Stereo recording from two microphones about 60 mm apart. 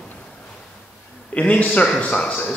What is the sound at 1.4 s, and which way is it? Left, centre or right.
Speech, left.